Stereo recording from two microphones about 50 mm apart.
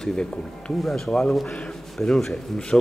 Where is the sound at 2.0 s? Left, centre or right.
Centre.